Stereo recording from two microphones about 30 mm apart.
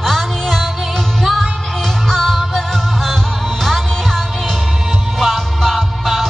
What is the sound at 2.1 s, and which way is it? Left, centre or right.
Music, centre.